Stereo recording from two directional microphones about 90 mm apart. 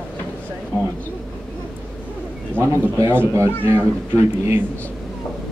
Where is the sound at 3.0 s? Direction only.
30° right (ahead or behind).